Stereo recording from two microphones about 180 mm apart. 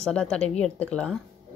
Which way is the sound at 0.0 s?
5° left (ahead or behind).